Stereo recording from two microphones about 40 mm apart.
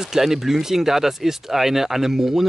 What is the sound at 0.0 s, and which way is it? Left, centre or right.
Speech, centre.